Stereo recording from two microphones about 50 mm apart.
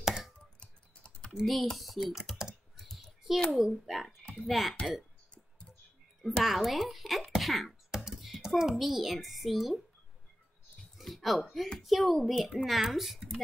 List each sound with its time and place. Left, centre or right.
0.0 s computer keyboard: centre
0.6 s typing: left
1.4 s speech: centre
6.2 s a child's voice: centre
11.0 s a sound: centre
11.4 s speech: centre